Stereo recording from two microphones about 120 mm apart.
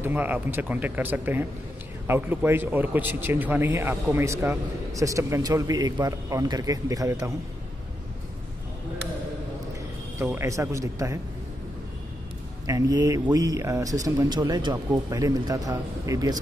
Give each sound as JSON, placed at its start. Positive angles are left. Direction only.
{"t": 0.0, "sound": "a man's voice", "side_deg": -15}
{"t": 10.1, "sound": "a man's voice", "side_deg": -20}
{"t": 12.6, "sound": "a man's voice", "side_deg": -30}